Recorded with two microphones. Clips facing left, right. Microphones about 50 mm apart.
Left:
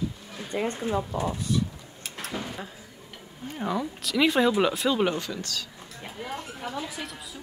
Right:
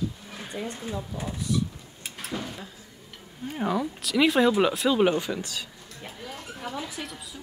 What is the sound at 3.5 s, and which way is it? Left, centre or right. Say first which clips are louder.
Speech: right 2 dB; centre.